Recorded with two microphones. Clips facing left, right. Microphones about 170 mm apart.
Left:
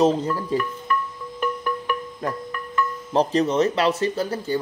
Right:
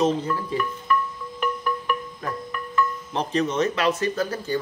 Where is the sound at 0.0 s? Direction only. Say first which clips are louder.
Left 3 dB; 35° left (ahead or behind).